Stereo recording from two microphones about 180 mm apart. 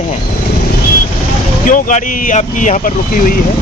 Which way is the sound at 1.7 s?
45° left (ahead or behind).